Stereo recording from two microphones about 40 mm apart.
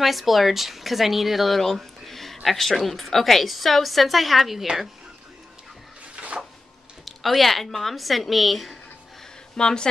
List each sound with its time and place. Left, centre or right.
0.0 s a woman's voice: centre
7.1 s a woman's voice: centre
9.6 s speech: centre